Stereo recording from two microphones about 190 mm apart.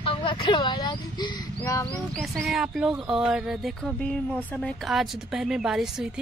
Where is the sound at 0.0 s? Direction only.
25° left (ahead or behind).